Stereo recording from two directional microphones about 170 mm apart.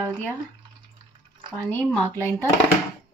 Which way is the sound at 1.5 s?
10° left (ahead or behind).